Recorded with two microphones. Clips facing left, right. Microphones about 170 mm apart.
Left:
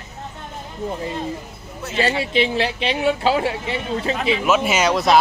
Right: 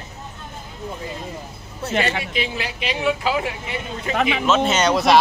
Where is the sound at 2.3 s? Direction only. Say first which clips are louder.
Left 7 dB; 30° left (ahead or behind).